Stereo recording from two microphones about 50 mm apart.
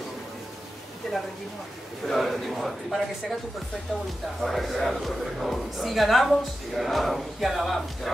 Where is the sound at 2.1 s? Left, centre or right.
Centre.